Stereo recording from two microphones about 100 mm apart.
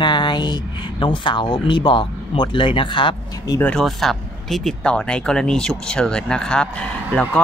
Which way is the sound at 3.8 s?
5° left (ahead or behind).